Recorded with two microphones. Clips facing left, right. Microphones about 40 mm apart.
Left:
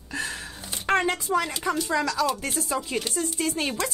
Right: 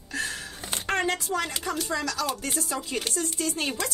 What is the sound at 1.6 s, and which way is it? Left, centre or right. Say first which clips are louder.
A woman's voice: left 4 dB; left.